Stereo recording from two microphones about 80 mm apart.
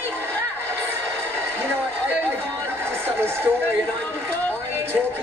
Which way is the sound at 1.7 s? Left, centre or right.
Right.